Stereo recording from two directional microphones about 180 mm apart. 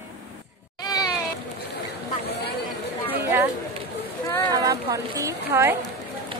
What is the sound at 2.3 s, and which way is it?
Chatter, 65° left (ahead or behind).